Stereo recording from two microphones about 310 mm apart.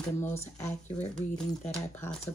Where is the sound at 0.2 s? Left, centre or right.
Centre.